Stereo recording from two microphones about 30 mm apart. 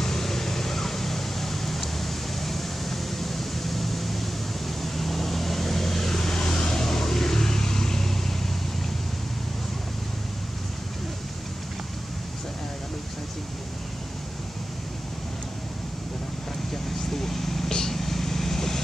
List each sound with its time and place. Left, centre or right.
0.0 s a sound: centre
4.8 s vehicle: centre
6.1 s vehicle: left
17.1 s vehicle: centre
17.6 s vehicle: centre
17.9 s vehicle: centre